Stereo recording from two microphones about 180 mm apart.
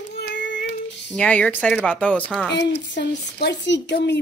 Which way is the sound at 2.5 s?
75° left (ahead or behind).